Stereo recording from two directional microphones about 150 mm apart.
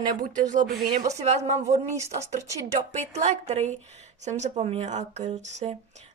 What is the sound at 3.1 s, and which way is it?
A woman's voice, 50° right (ahead or behind).